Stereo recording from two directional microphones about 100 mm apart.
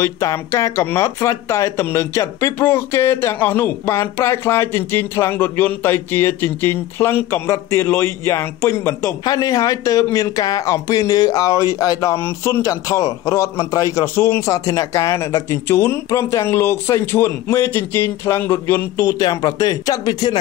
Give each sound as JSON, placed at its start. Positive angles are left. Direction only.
{"t": 0.0, "sound": "speech", "side_deg": 30}
{"t": 9.2, "sound": "a man's voice", "side_deg": 40}
{"t": 14.5, "sound": "speech", "side_deg": 35}